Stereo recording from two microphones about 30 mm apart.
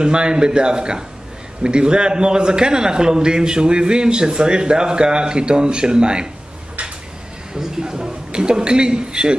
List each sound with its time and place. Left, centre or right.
0.0 s a man's voice: right
7.9 s a man's voice: right